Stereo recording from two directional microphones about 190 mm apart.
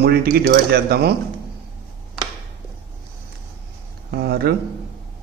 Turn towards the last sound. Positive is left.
turn(degrees=-55)  # may be behind; listen again after turning